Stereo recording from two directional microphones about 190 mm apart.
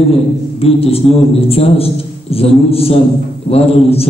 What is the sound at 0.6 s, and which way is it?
A man's voice, 30° left (ahead or behind).